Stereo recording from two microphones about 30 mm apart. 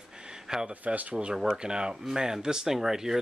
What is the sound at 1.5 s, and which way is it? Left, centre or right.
Speech, right.